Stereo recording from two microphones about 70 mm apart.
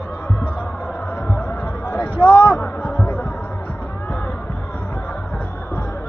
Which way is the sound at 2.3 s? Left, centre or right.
Centre.